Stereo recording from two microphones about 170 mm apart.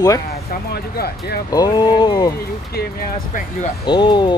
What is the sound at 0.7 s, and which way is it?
Speech, 65° left (ahead or behind).